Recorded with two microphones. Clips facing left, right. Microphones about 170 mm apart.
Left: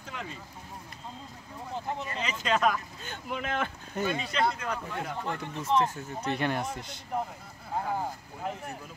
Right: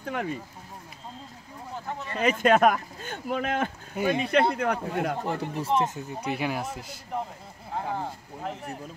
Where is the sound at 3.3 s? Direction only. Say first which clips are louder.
Right 4 dB; 45° right (ahead or behind).